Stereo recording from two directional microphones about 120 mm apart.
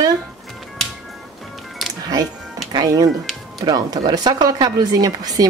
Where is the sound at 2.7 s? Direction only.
30° right (ahead or behind).